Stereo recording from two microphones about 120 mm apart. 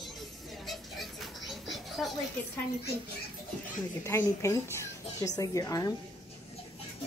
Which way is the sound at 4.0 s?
20° left (ahead or behind).